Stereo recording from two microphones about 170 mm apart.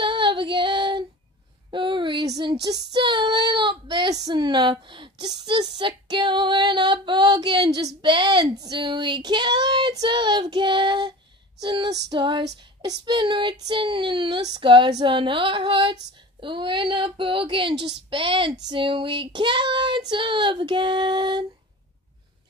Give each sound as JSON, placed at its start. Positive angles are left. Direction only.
{"t": 0.0, "sound": "female singing", "side_deg": -30}
{"t": 1.7, "sound": "speech", "side_deg": -30}
{"t": 2.9, "sound": "child singing", "side_deg": -25}